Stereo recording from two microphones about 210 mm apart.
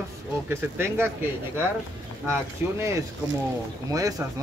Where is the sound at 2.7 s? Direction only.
15° right (ahead or behind).